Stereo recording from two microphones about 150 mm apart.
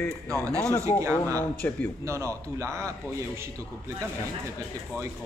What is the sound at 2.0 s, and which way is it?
Speech, 20° right (ahead or behind).